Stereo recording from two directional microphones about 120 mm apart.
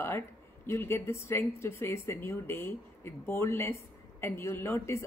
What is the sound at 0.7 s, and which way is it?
Speech, 20° left (ahead or behind).